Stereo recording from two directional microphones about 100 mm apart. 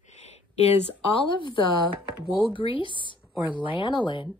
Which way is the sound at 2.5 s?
55° left (ahead or behind).